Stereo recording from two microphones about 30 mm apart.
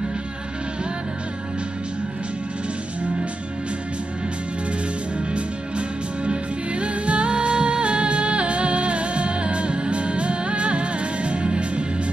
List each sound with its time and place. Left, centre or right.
5.3 s music: right